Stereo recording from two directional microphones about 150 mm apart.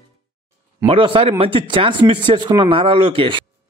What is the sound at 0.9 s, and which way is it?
Speech, 35° right (ahead or behind).